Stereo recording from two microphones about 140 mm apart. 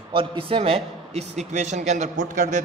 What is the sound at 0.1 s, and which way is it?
A man's voice, 40° right (ahead or behind).